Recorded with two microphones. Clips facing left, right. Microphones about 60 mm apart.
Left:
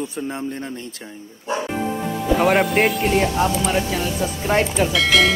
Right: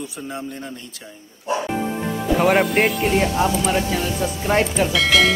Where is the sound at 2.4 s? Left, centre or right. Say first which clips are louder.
Even; centre.